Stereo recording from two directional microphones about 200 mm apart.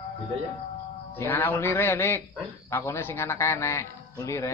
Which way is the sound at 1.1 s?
10° left (ahead or behind).